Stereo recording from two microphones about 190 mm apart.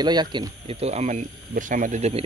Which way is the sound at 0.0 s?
20° right (ahead or behind).